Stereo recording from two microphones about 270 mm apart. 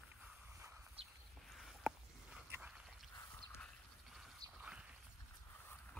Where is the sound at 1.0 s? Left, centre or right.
Right.